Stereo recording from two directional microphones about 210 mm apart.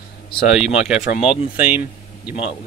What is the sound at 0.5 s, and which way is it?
Speech, 5° right (ahead or behind).